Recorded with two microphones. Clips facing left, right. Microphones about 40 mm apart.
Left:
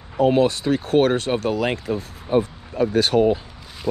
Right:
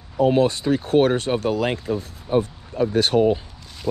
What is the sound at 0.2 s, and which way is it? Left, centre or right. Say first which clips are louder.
Speech: left 1 dB; left.